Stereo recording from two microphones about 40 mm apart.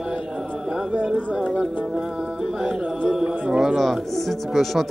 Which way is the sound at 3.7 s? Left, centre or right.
Centre.